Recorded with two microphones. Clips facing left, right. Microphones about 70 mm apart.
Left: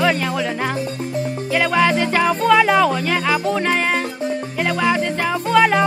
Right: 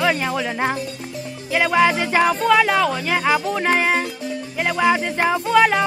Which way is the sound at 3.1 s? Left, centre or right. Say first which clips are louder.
Even; centre.